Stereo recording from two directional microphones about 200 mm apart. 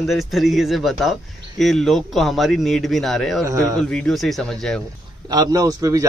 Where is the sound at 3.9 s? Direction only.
5° left (ahead or behind).